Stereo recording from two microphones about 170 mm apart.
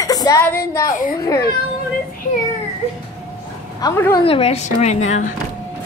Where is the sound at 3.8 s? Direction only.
15° left (ahead or behind).